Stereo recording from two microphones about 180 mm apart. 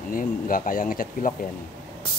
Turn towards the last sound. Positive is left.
turn(degrees=50)  # may be behind; listen again after turning